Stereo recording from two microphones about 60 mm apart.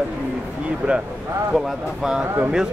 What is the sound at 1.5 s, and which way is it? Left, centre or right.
Speech, centre.